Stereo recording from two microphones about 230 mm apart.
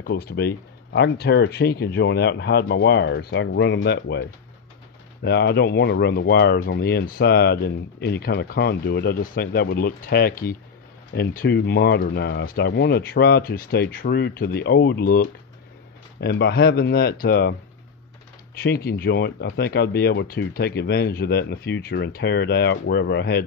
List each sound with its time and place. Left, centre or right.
0.0 s speech: left
18.6 s speech: left